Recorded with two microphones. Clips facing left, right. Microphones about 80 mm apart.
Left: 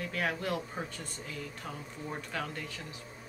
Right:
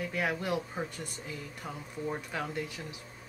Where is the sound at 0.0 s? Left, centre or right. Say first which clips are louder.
Right 1 dB; centre.